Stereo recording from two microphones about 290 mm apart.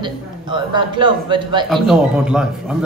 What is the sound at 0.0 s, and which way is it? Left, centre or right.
A man's voice, centre.